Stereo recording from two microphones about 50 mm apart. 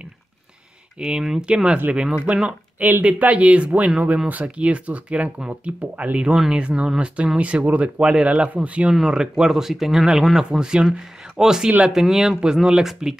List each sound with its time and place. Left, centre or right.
0.9 s speech: centre
8.9 s speech: centre